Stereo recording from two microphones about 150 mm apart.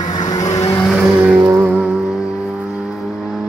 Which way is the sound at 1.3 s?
15° right (ahead or behind).